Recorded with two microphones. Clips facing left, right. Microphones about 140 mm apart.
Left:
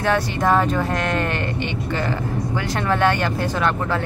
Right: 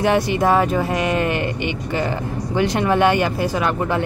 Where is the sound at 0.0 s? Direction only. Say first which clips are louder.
Right 3 dB; 15° right (ahead or behind).